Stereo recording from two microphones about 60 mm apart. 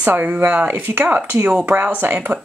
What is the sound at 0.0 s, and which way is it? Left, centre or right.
Speech, right.